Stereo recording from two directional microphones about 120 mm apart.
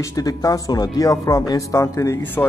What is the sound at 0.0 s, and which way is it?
Speech, 30° left (ahead or behind).